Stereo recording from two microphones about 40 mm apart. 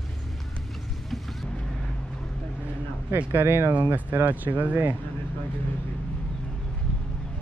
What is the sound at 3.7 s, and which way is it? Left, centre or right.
Speech, right.